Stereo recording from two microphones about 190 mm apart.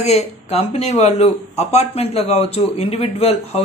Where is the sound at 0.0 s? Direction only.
35° left (ahead or behind).